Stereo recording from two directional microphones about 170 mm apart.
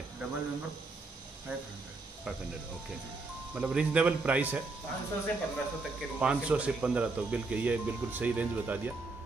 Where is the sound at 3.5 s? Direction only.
5° right (ahead or behind).